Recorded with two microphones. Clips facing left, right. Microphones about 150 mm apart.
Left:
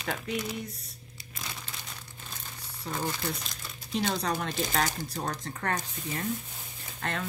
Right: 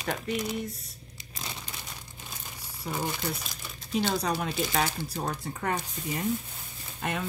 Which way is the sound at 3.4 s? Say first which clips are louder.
Right 1 dB; 5° right (ahead or behind).